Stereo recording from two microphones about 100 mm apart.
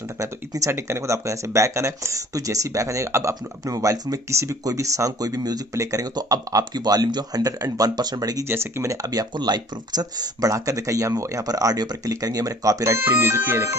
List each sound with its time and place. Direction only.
0.2 s speech: 30° right (ahead or behind)
8.5 s speech: 25° right (ahead or behind)
9.0 s speech: 40° right (ahead or behind)